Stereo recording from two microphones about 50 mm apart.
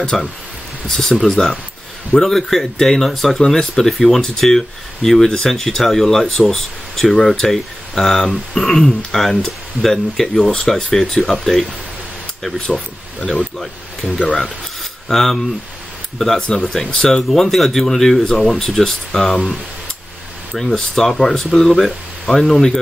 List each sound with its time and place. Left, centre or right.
0.0 s speech: centre
10.5 s speech: centre
12.5 s speech: centre
13.6 s speech: centre
16.3 s speech: centre
17.1 s speech: centre
20.6 s speech: centre